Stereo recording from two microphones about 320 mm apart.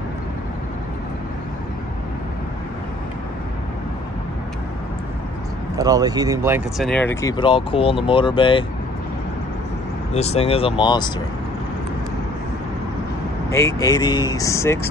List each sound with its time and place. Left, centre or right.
5.8 s speech: centre
10.1 s speech: centre
13.5 s speech: centre